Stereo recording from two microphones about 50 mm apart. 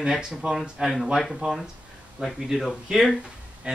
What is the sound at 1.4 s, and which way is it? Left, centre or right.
Speech, centre.